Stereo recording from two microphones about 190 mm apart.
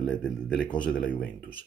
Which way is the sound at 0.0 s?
5° left (ahead or behind).